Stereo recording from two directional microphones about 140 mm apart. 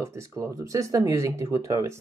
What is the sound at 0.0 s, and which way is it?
Speech, 20° right (ahead or behind).